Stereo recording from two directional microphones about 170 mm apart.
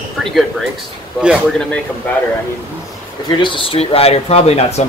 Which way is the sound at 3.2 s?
30° left (ahead or behind).